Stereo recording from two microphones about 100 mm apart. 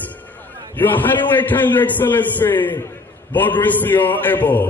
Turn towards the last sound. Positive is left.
turn(degrees=20)  # may be behind; listen again after turning